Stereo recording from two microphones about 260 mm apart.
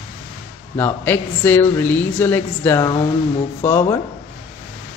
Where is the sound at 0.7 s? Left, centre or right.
Centre.